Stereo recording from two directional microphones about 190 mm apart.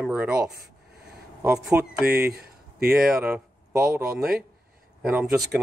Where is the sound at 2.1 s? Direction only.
55° right (ahead or behind).